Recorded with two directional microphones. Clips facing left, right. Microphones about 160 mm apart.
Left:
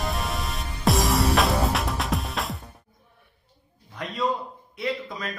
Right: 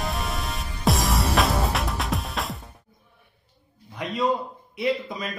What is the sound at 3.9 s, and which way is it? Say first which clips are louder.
Speech: right 3 dB; 10° right (ahead or behind).